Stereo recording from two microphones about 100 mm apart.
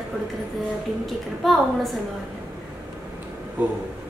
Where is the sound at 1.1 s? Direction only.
Centre (ahead or behind).